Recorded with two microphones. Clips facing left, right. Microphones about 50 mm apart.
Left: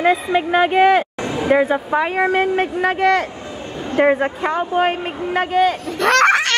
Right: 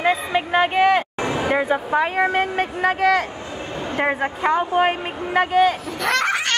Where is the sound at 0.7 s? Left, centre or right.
Centre.